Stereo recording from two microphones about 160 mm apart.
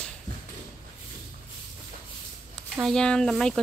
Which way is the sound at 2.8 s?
5° left (ahead or behind).